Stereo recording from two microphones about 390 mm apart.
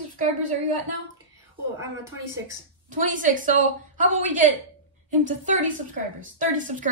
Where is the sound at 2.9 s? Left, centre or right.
Centre.